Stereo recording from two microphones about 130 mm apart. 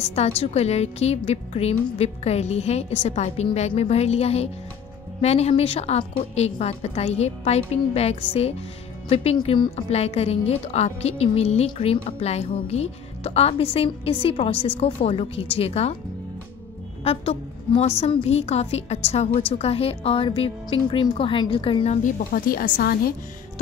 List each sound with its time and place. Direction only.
0.0 s a woman's voice: 55° left (ahead or behind)
17.0 s a woman's voice: 50° left (ahead or behind)
22.0 s speech: 90° left